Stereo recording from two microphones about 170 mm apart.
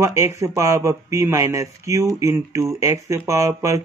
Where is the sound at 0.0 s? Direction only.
15° right (ahead or behind).